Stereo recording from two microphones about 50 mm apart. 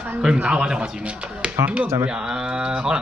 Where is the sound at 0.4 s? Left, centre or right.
Right.